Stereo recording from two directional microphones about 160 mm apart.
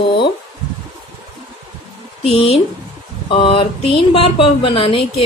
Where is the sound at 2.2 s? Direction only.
35° left (ahead or behind).